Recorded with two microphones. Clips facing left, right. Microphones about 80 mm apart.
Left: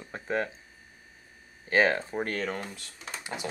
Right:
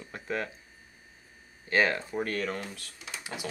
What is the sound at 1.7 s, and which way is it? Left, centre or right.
Speech, left.